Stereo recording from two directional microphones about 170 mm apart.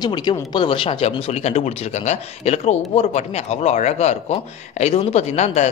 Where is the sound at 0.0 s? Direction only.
25° left (ahead or behind).